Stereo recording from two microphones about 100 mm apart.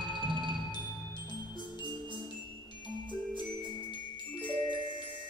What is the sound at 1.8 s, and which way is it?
Music, 50° right (ahead or behind).